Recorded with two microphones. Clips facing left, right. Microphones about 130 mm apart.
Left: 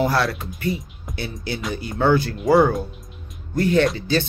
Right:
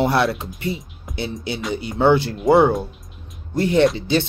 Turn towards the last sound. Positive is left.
turn(degrees=-25)  # may be behind; listen again after turning